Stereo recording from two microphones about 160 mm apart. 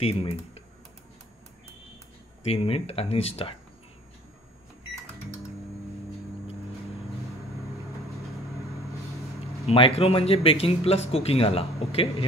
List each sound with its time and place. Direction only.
0.0 s speech: 35° left (ahead or behind)
2.4 s speech: 35° left (ahead or behind)
9.7 s speech: 35° left (ahead or behind)